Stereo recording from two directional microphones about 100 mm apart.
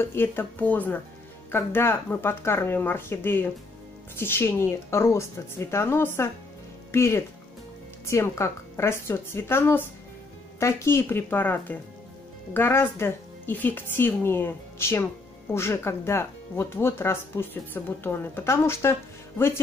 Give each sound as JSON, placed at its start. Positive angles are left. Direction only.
{"t": 0.0, "sound": "speech", "side_deg": 25}